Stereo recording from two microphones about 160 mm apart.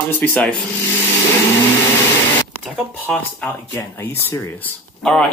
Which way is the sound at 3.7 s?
15° left (ahead or behind).